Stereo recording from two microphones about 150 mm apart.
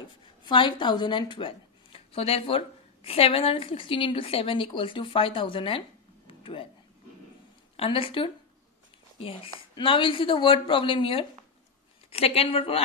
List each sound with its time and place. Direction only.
0.5 s a woman's voice: 35° left (ahead or behind)
6.2 s a sound: 35° left (ahead or behind)
7.7 s a woman's voice: 40° left (ahead or behind)